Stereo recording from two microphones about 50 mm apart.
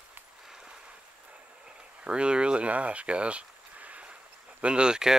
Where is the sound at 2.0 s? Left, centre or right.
Centre.